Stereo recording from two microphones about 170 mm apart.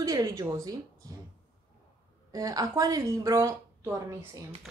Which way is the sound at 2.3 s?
20° right (ahead or behind).